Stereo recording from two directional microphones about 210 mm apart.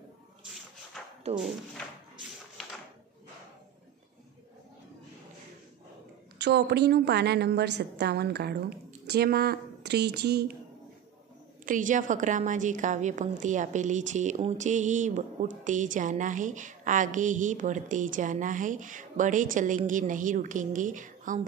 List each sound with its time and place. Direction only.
1.0 s a sound: centre (ahead or behind)
1.3 s speech: centre (ahead or behind)
6.3 s a woman's voice: 55° right (ahead or behind)
11.6 s a woman's voice: 40° right (ahead or behind)